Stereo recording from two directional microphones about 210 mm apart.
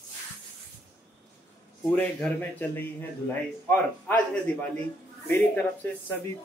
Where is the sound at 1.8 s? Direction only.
10° left (ahead or behind).